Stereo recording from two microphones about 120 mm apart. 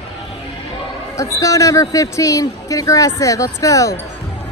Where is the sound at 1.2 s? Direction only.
25° left (ahead or behind).